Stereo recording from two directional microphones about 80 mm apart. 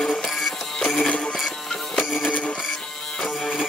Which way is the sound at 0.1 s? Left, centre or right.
Centre.